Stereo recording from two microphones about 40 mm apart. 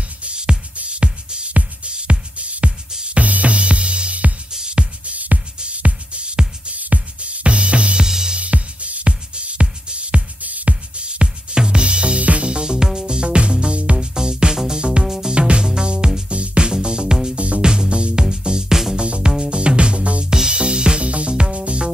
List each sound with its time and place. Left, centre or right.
0.2 s music: right
2.9 s music: right
3.2 s music: right
4.5 s music: centre
5.1 s music: right
8.1 s music: centre
8.4 s music: right
10.7 s music: right
12.4 s music: right
15.3 s music: right
20.2 s music: centre